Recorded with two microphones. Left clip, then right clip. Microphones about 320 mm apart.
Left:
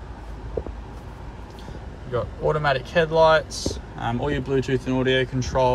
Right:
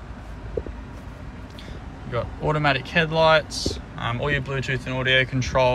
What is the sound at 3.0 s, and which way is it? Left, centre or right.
Speech, centre.